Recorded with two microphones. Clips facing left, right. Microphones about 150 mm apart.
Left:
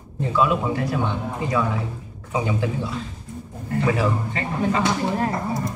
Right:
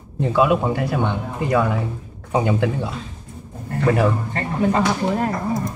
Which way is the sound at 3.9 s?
50° right (ahead or behind).